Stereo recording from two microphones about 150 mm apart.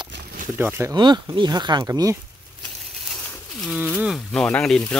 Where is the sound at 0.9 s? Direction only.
30° right (ahead or behind).